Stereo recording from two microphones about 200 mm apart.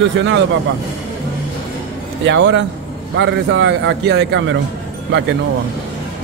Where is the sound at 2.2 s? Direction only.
65° right (ahead or behind).